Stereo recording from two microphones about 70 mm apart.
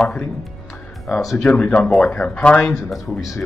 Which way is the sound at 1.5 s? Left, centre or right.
Centre.